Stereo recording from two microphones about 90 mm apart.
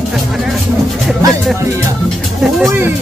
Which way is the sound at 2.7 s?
25° right (ahead or behind).